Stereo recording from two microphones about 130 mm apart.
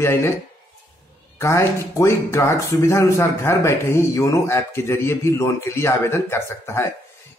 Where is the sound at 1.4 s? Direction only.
20° left (ahead or behind).